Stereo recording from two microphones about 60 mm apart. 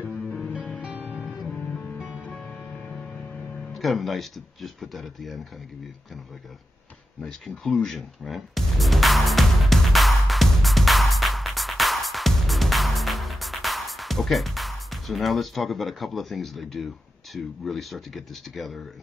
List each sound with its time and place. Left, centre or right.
0.2 s music: centre
0.5 s music: right
1.2 s music: centre
3.7 s speech: centre
7.2 s music: centre